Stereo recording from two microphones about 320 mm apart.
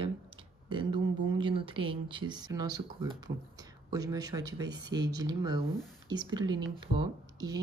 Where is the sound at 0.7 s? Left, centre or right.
Centre.